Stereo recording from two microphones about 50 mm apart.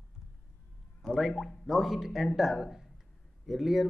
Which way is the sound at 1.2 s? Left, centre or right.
Centre.